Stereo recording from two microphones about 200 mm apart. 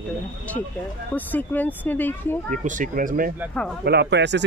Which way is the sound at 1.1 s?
10° left (ahead or behind).